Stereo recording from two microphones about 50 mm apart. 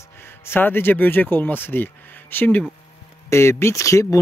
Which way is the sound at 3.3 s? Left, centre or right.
Left.